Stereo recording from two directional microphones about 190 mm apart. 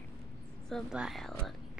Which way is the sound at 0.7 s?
Centre (ahead or behind).